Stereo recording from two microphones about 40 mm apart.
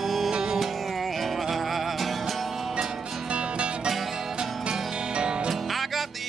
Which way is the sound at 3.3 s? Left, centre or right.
Right.